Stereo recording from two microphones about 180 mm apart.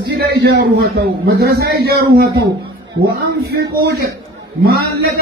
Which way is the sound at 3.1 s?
60° right (ahead or behind).